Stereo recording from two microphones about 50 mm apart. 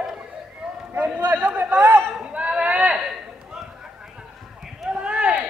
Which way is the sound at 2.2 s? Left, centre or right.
Right.